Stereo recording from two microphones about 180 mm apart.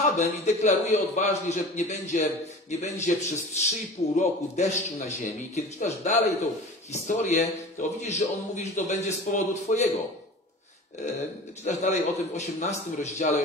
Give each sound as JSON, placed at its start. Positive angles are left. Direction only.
{"t": 0.0, "sound": "a man's voice", "side_deg": 40}
{"t": 11.1, "sound": "a man's voice", "side_deg": 40}